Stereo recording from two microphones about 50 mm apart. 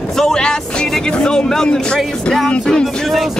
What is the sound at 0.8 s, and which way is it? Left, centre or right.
Speech, centre.